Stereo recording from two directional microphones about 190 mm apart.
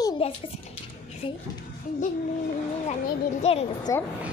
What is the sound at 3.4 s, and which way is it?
Speech, 35° left (ahead or behind).